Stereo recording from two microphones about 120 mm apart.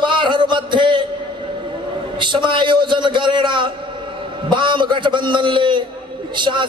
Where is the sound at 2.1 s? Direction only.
40° right (ahead or behind).